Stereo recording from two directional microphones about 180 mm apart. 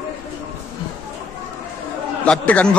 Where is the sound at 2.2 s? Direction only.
5° left (ahead or behind).